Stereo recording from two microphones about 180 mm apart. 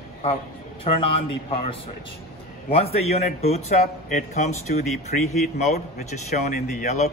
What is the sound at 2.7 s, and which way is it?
Speech, 35° left (ahead or behind).